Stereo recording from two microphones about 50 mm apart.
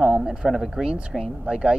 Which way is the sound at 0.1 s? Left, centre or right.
Centre.